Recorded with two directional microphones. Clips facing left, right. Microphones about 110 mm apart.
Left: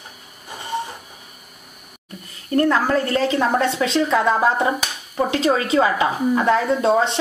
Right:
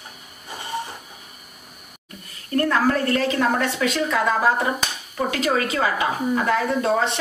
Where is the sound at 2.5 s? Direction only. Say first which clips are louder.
Left 2 dB; 25° left (ahead or behind).